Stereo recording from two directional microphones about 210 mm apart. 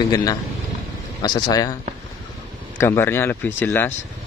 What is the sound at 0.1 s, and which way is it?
Speech, 15° left (ahead or behind).